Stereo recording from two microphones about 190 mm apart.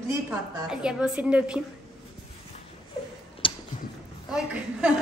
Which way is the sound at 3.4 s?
25° left (ahead or behind).